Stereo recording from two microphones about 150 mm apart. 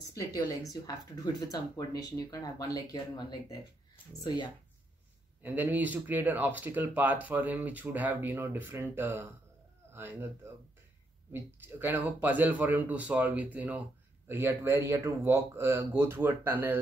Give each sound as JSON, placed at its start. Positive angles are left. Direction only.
{"t": 0.0, "sound": "a woman's voice", "side_deg": 20}
{"t": 5.4, "sound": "speech", "side_deg": -10}